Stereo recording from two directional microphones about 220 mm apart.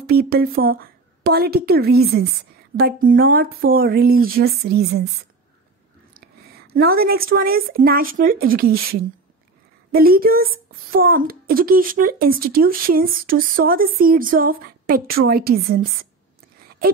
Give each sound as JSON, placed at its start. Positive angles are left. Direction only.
{"t": 0.1, "sound": "speech", "side_deg": -45}
{"t": 6.7, "sound": "a child's voice", "side_deg": -45}